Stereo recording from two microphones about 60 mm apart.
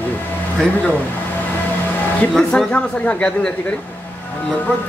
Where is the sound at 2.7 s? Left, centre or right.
Left.